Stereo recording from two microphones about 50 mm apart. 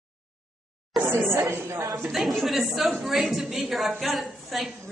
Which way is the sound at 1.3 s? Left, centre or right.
Right.